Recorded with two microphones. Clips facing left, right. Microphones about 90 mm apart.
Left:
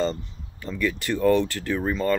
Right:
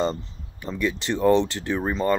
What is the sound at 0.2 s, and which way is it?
Speech, 20° right (ahead or behind).